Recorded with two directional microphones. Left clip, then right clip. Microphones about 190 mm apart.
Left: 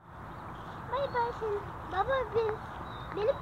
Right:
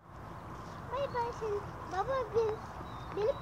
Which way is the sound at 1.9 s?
10° left (ahead or behind).